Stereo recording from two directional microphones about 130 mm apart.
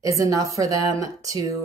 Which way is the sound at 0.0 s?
25° right (ahead or behind).